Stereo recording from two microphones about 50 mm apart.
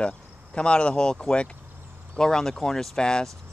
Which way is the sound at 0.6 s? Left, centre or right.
Left.